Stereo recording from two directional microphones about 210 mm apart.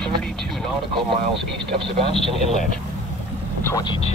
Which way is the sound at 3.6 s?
15° left (ahead or behind).